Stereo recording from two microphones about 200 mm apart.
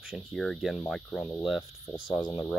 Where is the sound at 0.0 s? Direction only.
Centre (ahead or behind).